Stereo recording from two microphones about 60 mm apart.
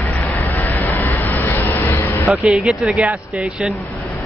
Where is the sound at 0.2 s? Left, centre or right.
Left.